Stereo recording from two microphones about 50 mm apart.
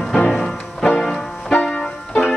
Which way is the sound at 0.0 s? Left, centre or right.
Centre.